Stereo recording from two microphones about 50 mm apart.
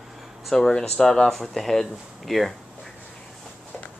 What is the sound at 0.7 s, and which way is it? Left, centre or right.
Speech, centre.